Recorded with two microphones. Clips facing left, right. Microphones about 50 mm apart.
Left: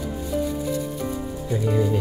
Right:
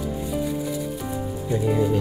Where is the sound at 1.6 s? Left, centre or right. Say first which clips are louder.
Right 1 dB; centre.